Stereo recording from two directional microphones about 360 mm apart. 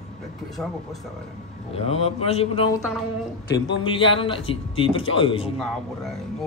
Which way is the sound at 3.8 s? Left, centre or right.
Centre.